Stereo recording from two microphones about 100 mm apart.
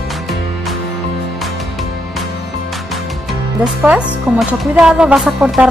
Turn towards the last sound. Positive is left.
turn(degrees=-10)  # may be behind; listen again after turning